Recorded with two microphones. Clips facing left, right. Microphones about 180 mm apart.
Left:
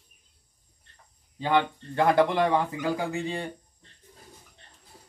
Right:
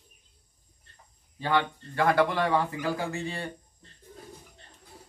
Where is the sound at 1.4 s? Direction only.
20° left (ahead or behind).